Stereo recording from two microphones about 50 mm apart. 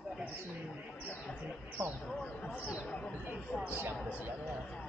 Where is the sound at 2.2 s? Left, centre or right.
Left.